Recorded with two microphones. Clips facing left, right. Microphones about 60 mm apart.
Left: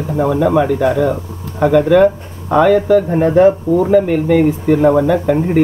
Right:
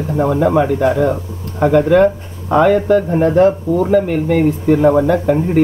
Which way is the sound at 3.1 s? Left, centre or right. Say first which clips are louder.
Left 1 dB; centre.